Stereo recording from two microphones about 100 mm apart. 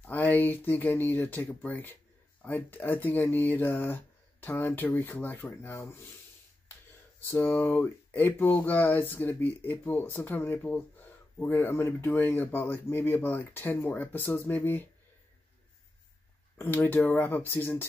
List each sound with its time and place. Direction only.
0.0 s speech: 20° left (ahead or behind)
7.2 s speech: 20° left (ahead or behind)
16.5 s speech: 20° left (ahead or behind)